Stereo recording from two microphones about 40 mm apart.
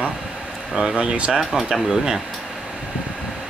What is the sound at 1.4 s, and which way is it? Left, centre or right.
Speech, centre.